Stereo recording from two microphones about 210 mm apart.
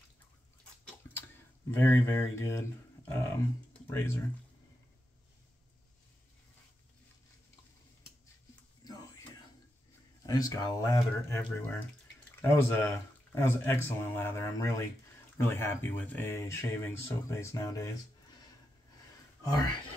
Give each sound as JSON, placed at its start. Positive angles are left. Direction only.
{"t": 1.8, "sound": "speech", "side_deg": 10}
{"t": 8.8, "sound": "a sound", "side_deg": 15}
{"t": 10.2, "sound": "speech", "side_deg": 15}